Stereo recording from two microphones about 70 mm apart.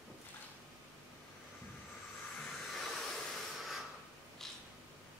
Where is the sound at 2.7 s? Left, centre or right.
Centre.